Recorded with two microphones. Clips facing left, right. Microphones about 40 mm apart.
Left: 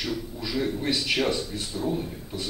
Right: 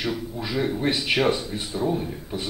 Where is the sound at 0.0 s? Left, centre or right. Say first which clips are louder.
Right 3 dB; right.